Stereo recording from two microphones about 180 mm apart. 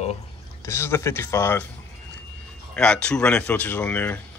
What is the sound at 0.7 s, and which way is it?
Speech, 15° left (ahead or behind).